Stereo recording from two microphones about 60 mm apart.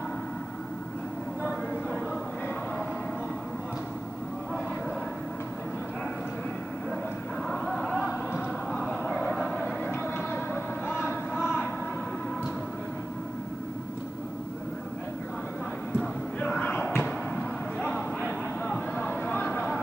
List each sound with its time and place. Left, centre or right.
7.4 s vehicle: centre
10.1 s vehicle: left
11.0 s vehicle: centre
16.3 s a sound: centre